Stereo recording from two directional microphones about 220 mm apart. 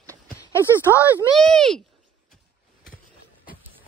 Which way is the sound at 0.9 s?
10° left (ahead or behind).